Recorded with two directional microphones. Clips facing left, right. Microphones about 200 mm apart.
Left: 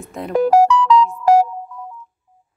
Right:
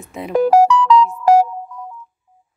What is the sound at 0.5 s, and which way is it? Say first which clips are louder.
Music: right 1 dB; 55° right (ahead or behind).